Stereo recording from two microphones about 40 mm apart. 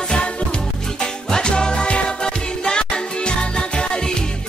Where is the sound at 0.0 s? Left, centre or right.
Left.